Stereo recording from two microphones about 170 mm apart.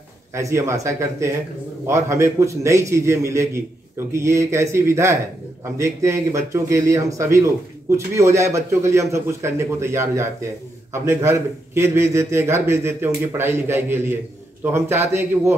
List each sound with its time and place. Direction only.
0.3 s speech: 15° right (ahead or behind)